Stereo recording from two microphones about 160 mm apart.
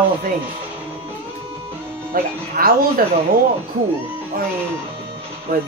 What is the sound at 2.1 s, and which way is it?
Speech, 65° right (ahead or behind).